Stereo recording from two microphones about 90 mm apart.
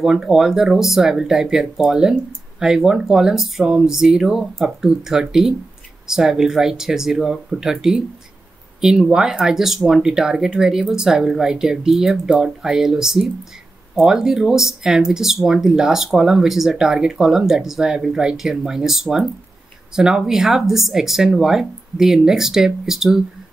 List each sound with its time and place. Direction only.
0.0 s speech: 5° right (ahead or behind)